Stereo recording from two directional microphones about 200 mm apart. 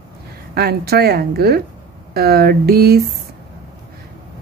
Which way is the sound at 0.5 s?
50° right (ahead or behind).